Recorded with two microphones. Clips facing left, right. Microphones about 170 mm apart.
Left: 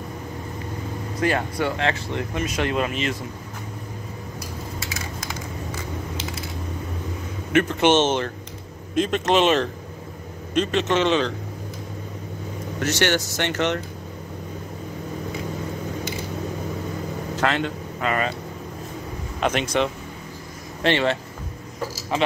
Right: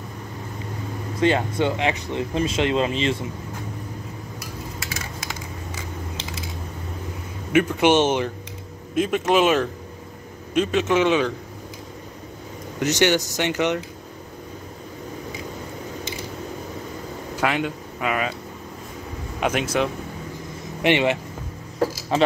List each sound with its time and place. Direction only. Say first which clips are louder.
1.2 s speech: right 3 dB; 20° right (ahead or behind)
2.3 s speech: right 3 dB; 25° right (ahead or behind)
7.5 s speech: right 1 dB; 10° right (ahead or behind)
12.8 s speech: right 3 dB; 15° right (ahead or behind)
17.4 s speech: even; 10° right (ahead or behind)
19.4 s speech: even; 5° right (ahead or behind)
20.8 s speech: right 1 dB; 15° right (ahead or behind)